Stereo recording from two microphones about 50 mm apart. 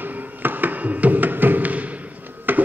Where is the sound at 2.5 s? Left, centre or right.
Right.